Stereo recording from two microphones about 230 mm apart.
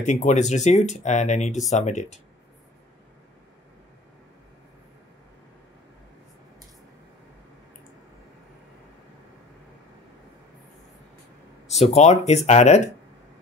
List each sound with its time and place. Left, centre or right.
0.0 s speech: left
11.8 s speech: left